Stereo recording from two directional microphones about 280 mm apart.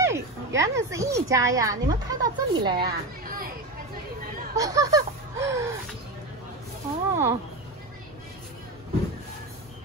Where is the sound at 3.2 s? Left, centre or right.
Right.